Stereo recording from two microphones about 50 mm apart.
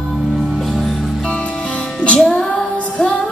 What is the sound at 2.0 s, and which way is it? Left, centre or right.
Music, centre.